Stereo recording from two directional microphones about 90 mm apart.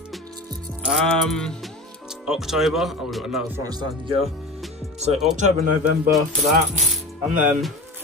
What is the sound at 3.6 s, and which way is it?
Speech, 50° right (ahead or behind).